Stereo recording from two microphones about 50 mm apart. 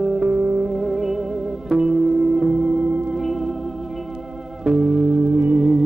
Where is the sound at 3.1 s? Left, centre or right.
Centre.